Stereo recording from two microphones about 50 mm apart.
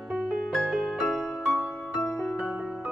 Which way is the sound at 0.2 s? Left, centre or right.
Centre.